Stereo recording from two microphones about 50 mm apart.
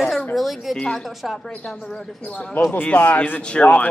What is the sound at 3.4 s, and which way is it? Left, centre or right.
Speech, left.